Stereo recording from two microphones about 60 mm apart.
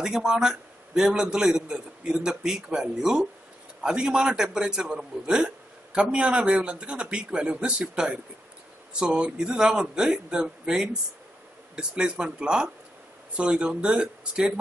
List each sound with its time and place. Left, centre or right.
0.0 s a man's voice: centre